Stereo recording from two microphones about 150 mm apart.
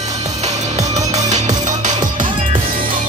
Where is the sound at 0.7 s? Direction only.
50° right (ahead or behind).